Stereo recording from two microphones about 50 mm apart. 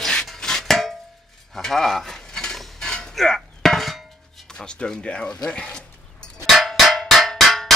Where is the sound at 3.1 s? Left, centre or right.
Centre.